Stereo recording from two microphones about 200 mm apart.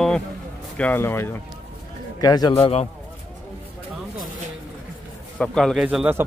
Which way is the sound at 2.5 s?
30° left (ahead or behind).